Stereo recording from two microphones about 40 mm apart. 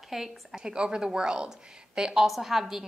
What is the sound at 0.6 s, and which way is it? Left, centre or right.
A woman's voice, right.